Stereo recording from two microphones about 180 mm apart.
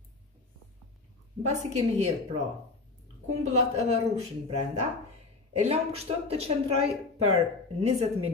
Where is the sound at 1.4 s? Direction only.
40° right (ahead or behind).